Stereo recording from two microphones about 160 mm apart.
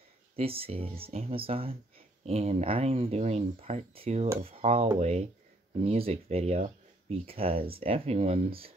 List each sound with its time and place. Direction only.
0.4 s speech: 35° right (ahead or behind)